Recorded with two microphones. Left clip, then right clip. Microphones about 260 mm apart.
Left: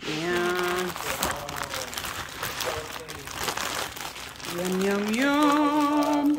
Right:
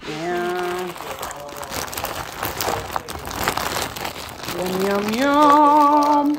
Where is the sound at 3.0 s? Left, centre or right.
Right.